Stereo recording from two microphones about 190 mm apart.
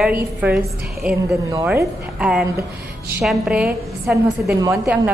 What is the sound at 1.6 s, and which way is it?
A woman's voice, 5° right (ahead or behind).